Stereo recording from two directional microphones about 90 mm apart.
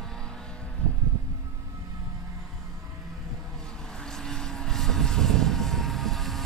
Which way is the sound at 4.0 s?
5° left (ahead or behind).